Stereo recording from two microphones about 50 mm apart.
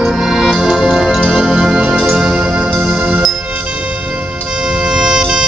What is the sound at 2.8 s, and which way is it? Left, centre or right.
Music, right.